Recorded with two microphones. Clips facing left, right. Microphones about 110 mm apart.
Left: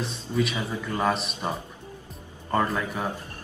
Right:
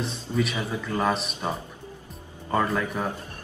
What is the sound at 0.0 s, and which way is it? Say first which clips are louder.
Speech: even; centre (ahead or behind).